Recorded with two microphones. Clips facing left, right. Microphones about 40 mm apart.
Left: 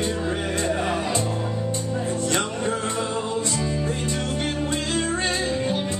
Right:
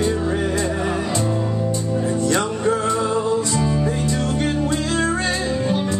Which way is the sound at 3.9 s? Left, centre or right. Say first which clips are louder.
Right 5 dB; left.